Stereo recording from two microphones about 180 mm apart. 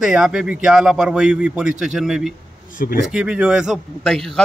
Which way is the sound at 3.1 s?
5° right (ahead or behind).